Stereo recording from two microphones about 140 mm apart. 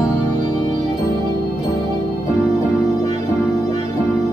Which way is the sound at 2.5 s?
30° left (ahead or behind).